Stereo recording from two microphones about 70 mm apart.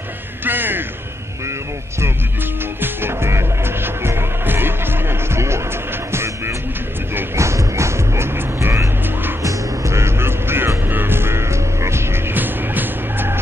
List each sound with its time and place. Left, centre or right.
0.5 s a sound: right
2.8 s music: right
9.4 s music: right